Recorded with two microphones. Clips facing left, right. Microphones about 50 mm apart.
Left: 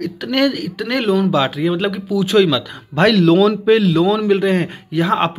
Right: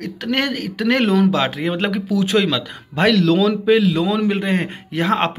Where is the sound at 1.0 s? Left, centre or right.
Right.